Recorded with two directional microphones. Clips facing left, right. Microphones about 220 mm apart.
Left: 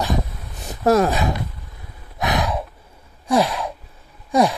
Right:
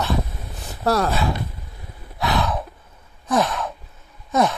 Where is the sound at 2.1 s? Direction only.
20° left (ahead or behind).